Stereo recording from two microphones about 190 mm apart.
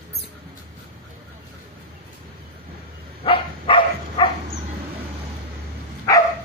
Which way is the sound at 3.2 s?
30° left (ahead or behind).